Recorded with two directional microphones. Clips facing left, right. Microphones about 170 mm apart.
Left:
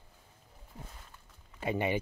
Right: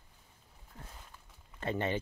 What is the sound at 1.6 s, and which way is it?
Speech, 10° left (ahead or behind).